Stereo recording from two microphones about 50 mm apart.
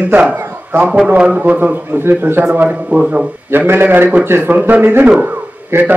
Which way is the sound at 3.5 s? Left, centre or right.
Right.